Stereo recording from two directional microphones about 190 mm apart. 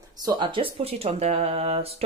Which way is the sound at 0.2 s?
25° right (ahead or behind).